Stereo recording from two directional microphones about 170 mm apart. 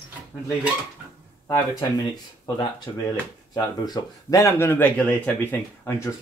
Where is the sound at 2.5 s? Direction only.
25° left (ahead or behind).